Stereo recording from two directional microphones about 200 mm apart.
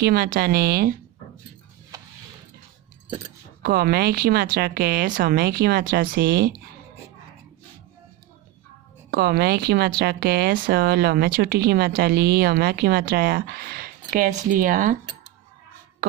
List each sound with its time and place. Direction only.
0.0 s speech: 50° right (ahead or behind)
3.6 s speech: 50° right (ahead or behind)
9.1 s speech: 50° right (ahead or behind)